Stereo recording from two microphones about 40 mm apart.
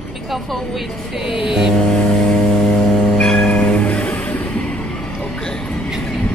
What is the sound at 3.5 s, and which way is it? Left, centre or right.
Music, left.